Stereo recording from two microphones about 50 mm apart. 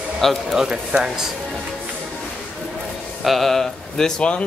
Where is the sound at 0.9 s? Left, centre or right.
Centre.